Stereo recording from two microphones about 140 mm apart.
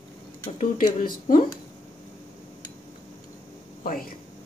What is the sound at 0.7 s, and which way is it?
Speech, 75° left (ahead or behind).